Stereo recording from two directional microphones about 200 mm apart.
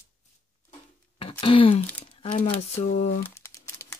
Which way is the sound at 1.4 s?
25° left (ahead or behind).